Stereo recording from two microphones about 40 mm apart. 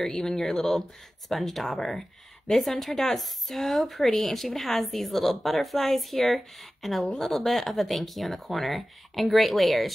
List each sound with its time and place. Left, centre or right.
0.0 s a woman's voice: centre
1.9 s speech: centre
2.5 s a woman's voice: centre